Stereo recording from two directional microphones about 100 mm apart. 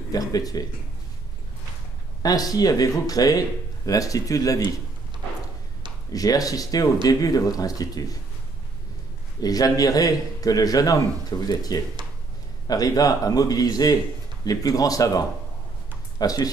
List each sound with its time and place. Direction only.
0.1 s a man's voice: 40° left (ahead or behind)
2.2 s a man's voice: 40° left (ahead or behind)
6.1 s a man's voice: 40° left (ahead or behind)
9.4 s a man's voice: 40° left (ahead or behind)